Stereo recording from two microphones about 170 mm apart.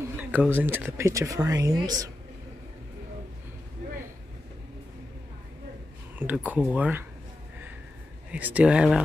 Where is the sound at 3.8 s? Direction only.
75° right (ahead or behind).